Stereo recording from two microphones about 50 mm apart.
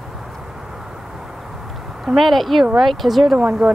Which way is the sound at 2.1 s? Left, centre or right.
Centre.